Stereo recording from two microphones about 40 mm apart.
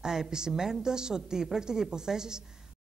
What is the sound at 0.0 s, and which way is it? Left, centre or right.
A woman's voice, centre.